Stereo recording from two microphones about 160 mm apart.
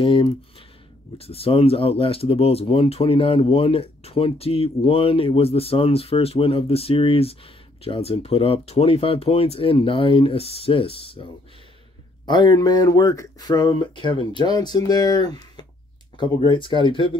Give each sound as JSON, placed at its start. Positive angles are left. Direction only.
{"t": 0.0, "sound": "speech", "side_deg": 35}
{"t": 12.3, "sound": "speech", "side_deg": 30}